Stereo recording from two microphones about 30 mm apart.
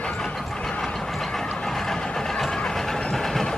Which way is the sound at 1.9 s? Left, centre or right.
Centre.